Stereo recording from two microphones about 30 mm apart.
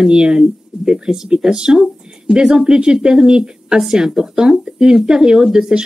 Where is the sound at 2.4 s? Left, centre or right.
Right.